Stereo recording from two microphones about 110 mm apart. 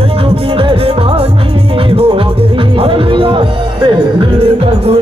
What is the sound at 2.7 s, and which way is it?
Music, 55° right (ahead or behind).